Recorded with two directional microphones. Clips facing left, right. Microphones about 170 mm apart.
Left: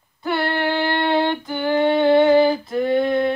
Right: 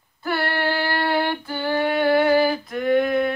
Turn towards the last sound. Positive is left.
turn(degrees=30)  # may be behind; listen again after turning